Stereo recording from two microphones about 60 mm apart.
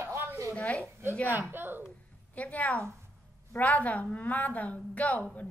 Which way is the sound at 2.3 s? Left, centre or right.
Left.